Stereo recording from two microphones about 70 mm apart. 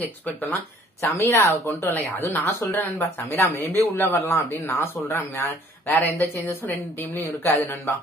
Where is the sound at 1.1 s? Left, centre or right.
Left.